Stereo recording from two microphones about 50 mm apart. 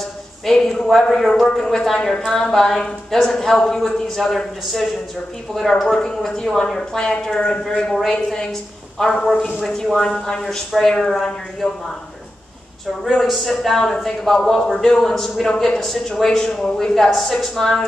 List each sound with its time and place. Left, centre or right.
0.5 s a man's voice: centre
7.0 s a man's voice: centre
10.8 s a man's voice: centre
13.0 s a man's voice: centre